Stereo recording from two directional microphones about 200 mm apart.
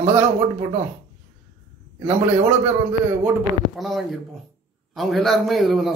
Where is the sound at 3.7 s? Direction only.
Centre (ahead or behind).